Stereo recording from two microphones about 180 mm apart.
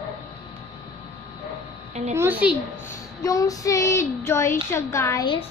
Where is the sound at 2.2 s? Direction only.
10° right (ahead or behind).